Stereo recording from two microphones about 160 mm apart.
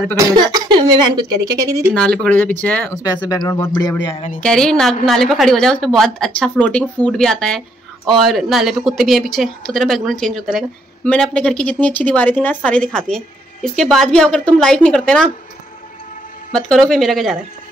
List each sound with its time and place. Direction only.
0.2 s speech: 25° right (ahead or behind)
2.0 s speech: 5° left (ahead or behind); by 4.2 s 25° left (ahead or behind)
4.4 s a woman's voice: 5° left (ahead or behind)
16.5 s a woman's voice: 5° left (ahead or behind)